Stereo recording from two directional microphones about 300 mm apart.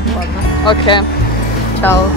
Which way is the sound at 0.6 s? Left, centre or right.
Centre.